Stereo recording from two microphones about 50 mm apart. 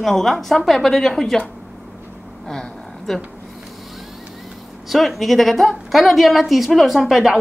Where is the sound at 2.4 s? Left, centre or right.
Centre.